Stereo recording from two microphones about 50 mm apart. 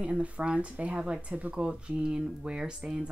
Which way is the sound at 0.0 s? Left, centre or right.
Right.